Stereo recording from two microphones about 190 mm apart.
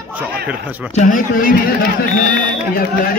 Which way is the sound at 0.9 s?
45° left (ahead or behind).